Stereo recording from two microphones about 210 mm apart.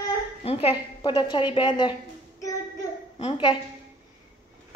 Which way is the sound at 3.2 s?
25° left (ahead or behind).